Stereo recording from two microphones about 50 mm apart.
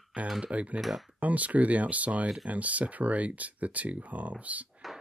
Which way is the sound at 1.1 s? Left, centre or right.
Right.